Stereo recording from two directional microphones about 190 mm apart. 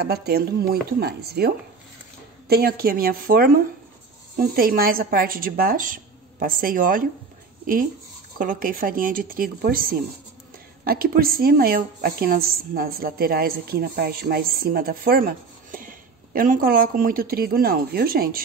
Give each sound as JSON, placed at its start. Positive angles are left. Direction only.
{"t": 0.0, "sound": "a woman's voice", "side_deg": -55}
{"t": 8.4, "sound": "a woman's voice", "side_deg": -45}